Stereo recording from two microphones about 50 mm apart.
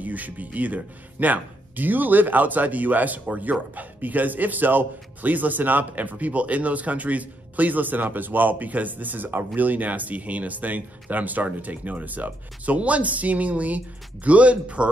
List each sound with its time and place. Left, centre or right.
0.0 s a man's voice: right